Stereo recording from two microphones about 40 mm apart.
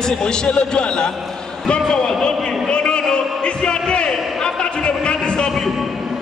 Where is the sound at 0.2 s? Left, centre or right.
Left.